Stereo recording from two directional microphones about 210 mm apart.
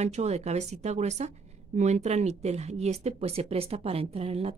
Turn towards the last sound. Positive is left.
turn(degrees=-30)  # may be behind; listen again after turning